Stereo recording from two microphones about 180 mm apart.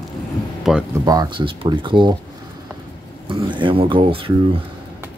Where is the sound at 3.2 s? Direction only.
25° right (ahead or behind).